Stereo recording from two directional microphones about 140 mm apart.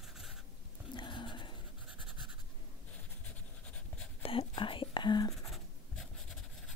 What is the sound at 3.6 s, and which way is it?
Writing, 10° left (ahead or behind).